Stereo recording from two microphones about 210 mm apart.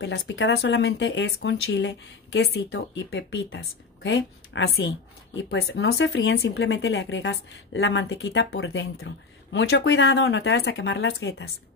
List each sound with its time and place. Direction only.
0.0 s a woman's voice: 55° left (ahead or behind)
6.0 s a woman's voice: 70° left (ahead or behind)
10.7 s speech: 65° left (ahead or behind)